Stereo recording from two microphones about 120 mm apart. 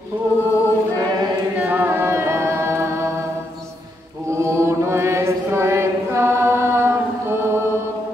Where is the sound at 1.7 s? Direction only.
15° right (ahead or behind).